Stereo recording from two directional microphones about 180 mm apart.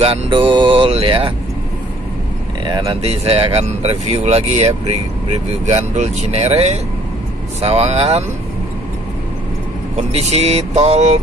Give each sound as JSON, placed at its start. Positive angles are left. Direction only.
{"t": 0.0, "sound": "mantra", "side_deg": -30}
{"t": 2.6, "sound": "speech", "side_deg": -25}
{"t": 9.9, "sound": "speech", "side_deg": -35}